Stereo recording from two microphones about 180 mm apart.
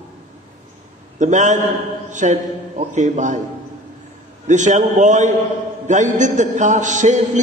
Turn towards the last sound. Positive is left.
turn(degrees=-45)  # may be behind; listen again after turning